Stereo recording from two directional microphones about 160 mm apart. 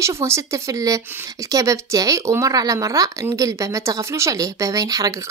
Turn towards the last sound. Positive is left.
turn(degrees=-20)  # may be behind; listen again after turning